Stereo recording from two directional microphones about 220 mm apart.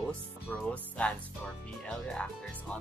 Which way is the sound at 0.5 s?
5° left (ahead or behind).